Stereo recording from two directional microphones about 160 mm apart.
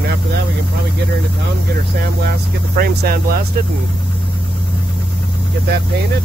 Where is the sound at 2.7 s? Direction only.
70° right (ahead or behind).